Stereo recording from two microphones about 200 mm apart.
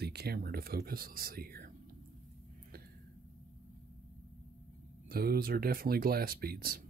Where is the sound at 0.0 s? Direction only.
55° right (ahead or behind).